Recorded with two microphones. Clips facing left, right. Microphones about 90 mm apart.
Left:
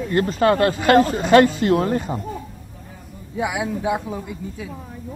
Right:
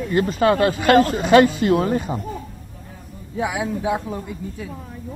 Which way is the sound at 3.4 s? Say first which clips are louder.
Even; 5° left (ahead or behind).